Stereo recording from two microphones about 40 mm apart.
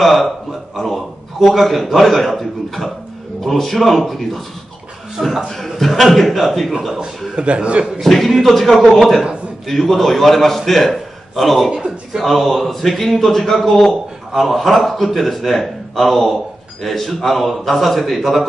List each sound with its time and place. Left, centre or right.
0.0 s a man's voice: centre
5.5 s a man's voice: centre
7.3 s a man's voice: right
8.0 s a man's voice: centre
11.7 s a man's voice: centre
12.2 s a man's voice: centre